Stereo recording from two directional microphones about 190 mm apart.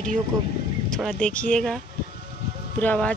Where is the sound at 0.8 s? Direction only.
5° left (ahead or behind).